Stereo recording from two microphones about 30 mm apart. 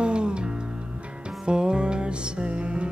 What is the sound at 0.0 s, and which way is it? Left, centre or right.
Music, right.